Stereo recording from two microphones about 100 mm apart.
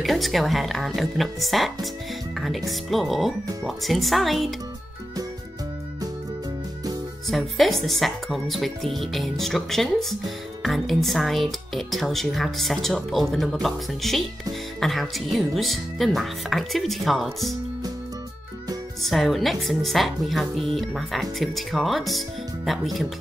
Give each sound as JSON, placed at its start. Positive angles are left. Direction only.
{"t": 0.0, "sound": "speech", "side_deg": 0}
{"t": 7.2, "sound": "speech", "side_deg": 0}
{"t": 19.0, "sound": "speech", "side_deg": 0}